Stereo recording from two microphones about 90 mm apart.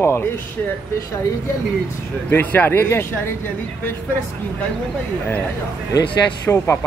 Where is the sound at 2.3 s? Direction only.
20° left (ahead or behind).